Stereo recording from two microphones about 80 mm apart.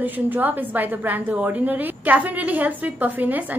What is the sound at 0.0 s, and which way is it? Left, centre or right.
A woman's voice, right.